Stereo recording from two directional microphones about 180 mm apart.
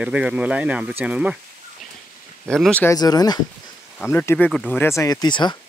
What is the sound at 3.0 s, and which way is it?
Speech, 20° left (ahead or behind).